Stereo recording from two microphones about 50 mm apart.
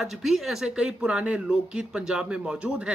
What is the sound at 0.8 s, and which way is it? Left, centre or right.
Speech, centre.